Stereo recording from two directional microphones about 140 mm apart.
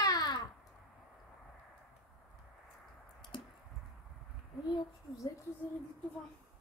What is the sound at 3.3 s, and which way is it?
Squish, 35° left (ahead or behind).